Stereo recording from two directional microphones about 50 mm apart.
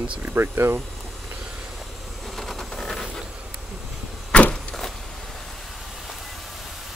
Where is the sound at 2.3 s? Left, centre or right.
Centre.